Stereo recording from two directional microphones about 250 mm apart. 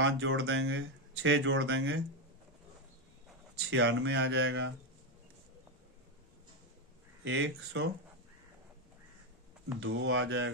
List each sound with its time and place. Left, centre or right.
0.0 s speech: right
3.7 s speech: right
7.2 s speech: right
9.8 s speech: right